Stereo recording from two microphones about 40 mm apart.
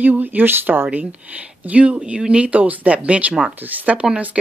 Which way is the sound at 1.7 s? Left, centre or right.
Right.